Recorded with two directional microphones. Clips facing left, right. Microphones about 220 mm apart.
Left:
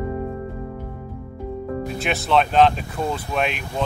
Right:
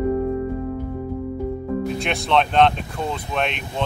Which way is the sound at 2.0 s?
5° left (ahead or behind).